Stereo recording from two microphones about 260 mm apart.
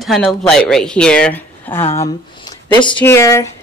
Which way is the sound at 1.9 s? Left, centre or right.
Centre.